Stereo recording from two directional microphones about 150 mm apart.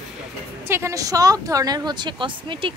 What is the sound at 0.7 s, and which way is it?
Speech, 20° right (ahead or behind).